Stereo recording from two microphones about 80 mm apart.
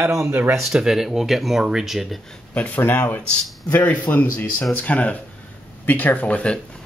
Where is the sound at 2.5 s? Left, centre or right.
Centre.